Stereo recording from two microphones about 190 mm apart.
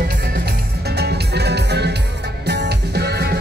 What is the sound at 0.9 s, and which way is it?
Music, 60° right (ahead or behind).